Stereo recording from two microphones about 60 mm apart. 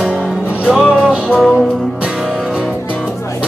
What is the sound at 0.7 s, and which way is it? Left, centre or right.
Music, centre.